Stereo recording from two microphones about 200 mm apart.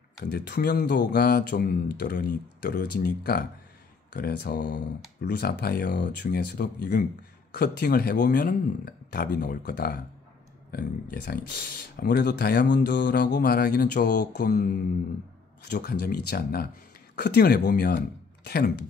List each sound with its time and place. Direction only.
0.2 s speech: 55° left (ahead or behind)
15.7 s speech: 55° left (ahead or behind)